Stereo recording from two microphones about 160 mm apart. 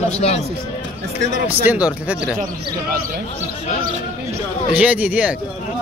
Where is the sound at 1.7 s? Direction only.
10° right (ahead or behind).